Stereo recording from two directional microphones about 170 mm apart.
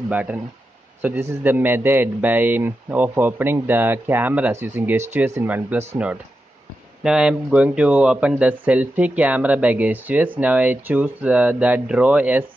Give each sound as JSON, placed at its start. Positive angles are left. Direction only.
{"t": 0.1, "sound": "speech", "side_deg": -10}
{"t": 7.0, "sound": "speech", "side_deg": -5}